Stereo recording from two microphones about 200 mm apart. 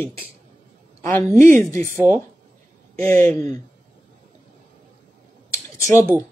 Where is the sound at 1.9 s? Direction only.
10° right (ahead or behind).